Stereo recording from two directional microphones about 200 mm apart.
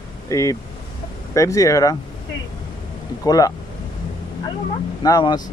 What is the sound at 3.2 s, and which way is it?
Speech, 20° left (ahead or behind).